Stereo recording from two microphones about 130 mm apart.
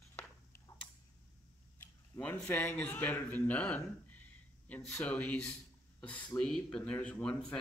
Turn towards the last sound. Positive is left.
turn(degrees=5)  # may be behind; listen again after turning